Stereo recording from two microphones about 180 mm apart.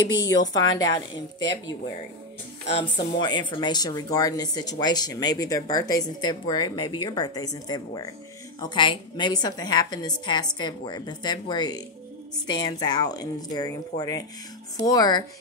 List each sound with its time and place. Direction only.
0.2 s speech: 80° left
0.5 s speech: 20° left (ahead or behind)
2.7 s speech: 25° left (ahead or behind)